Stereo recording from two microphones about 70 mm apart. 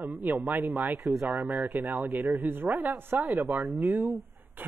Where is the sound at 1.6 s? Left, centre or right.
Right.